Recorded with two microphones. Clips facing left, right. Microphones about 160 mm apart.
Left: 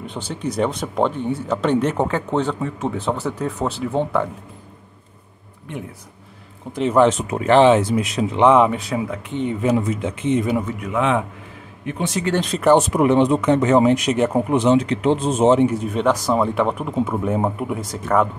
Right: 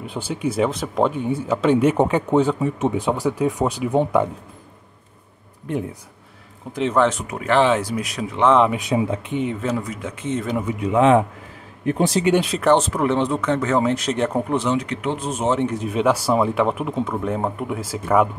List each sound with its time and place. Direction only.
0.0 s speech: 5° right (ahead or behind)
6.7 s speech: centre (ahead or behind)
7.0 s speech: 20° left (ahead or behind)
8.5 s speech: 5° left (ahead or behind)
8.7 s speech: 20° right (ahead or behind)
9.6 s speech: 15° left (ahead or behind)
10.8 s a man's voice: 30° right (ahead or behind)
12.4 s speech: centre (ahead or behind)
12.7 s speech: 15° left (ahead or behind)
14.6 s speech: 25° left (ahead or behind)
15.6 s speech: centre (ahead or behind)